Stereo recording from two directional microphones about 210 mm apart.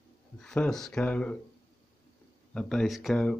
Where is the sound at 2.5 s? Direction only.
5° left (ahead or behind).